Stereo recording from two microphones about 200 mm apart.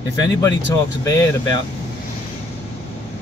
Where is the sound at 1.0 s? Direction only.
20° left (ahead or behind).